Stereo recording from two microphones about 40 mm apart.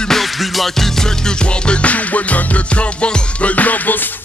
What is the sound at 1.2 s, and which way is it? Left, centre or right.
Music, left.